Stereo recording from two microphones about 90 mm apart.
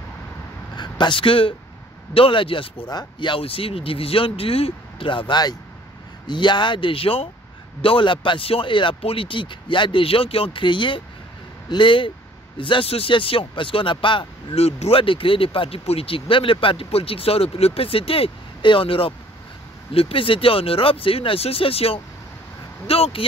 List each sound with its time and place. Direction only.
0.7 s speech: 55° left (ahead or behind); by 1.5 s 75° left (ahead or behind)
2.1 s speech: 85° left
2.9 s speech: 55° left (ahead or behind); by 7.2 s 90° left
7.8 s speech: 75° left (ahead or behind)
14.9 s speech: 90° left